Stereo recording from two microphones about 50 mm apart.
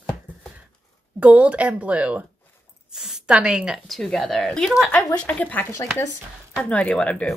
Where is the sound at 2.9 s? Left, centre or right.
Centre.